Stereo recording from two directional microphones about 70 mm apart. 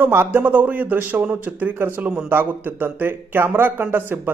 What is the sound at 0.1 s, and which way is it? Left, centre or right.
Speech, right.